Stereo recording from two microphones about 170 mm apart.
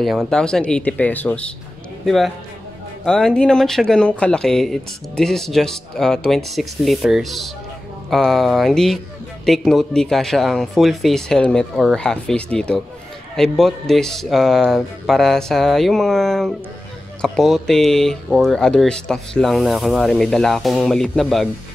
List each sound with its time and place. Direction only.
0.0 s speech: centre (ahead or behind)